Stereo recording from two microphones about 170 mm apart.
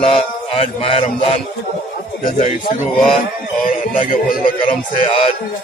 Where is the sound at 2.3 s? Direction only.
40° left (ahead or behind).